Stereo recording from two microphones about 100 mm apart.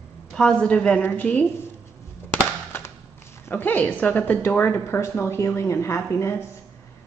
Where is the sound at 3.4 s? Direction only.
20° left (ahead or behind).